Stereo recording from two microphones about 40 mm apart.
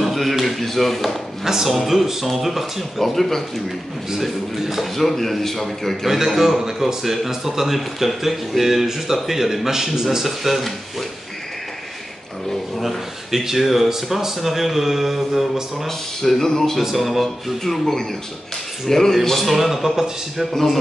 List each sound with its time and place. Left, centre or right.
0.0 s speech: centre
1.4 s a man's voice: centre
4.1 s a man's voice: centre
4.8 s speech: centre
6.0 s a man's voice: centre
12.8 s speech: centre
16.2 s speech: centre
16.8 s speech: centre
18.9 s speech: centre